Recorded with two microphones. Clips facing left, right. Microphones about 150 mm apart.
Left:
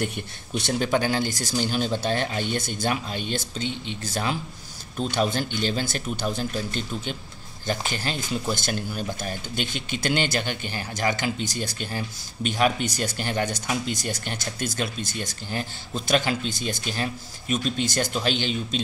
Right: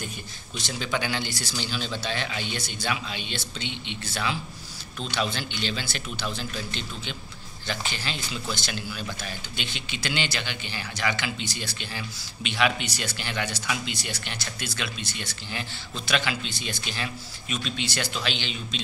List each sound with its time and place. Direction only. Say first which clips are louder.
0.6 s speech: left 7 dB; 55° left (ahead or behind)